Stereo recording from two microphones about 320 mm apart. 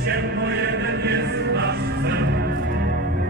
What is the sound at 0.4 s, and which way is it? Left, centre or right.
Music, right.